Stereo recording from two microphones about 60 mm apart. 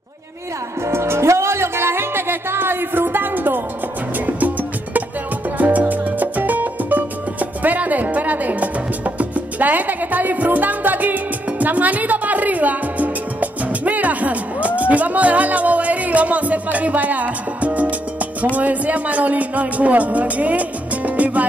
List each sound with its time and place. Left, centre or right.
0.8 s music: right
18.6 s speech: right